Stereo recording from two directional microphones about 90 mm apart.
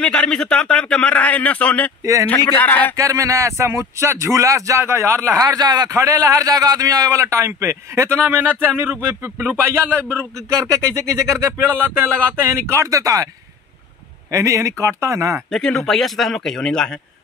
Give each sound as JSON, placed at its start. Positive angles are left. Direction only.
{"t": 0.0, "sound": "speech", "side_deg": 10}
{"t": 3.0, "sound": "speech", "side_deg": -35}
{"t": 11.5, "sound": "speech", "side_deg": -25}
{"t": 14.3, "sound": "speech", "side_deg": -35}
{"t": 15.5, "sound": "speech", "side_deg": 5}